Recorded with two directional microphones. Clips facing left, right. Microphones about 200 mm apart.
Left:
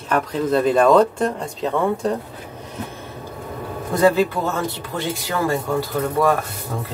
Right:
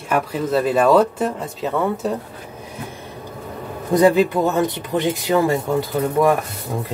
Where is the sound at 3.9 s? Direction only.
15° right (ahead or behind).